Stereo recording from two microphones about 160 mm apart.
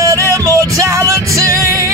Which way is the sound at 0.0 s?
20° right (ahead or behind).